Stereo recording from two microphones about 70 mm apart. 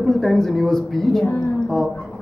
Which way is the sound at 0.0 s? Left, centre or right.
Centre.